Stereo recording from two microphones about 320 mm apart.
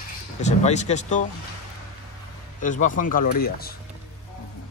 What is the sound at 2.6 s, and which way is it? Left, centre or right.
Speech, left.